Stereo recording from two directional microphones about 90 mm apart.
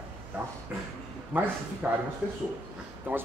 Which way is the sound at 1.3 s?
20° right (ahead or behind).